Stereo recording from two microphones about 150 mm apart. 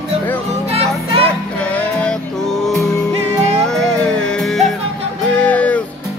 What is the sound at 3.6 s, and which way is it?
Music, 5° left (ahead or behind).